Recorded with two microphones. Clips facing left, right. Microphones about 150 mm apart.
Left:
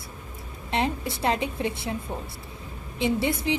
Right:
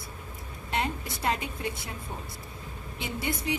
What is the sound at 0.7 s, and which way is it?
A woman's voice, 30° left (ahead or behind).